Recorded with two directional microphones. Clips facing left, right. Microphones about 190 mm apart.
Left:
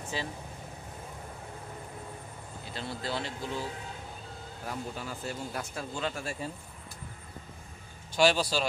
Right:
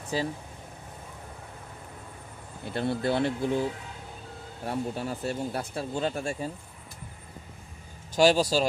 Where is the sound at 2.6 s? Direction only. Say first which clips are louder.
Right 10 dB; 60° right (ahead or behind).